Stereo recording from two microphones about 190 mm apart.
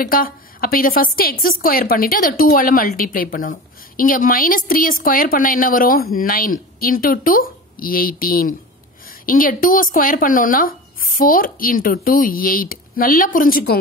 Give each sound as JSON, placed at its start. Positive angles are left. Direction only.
{"t": 0.0, "sound": "a woman's voice", "side_deg": 50}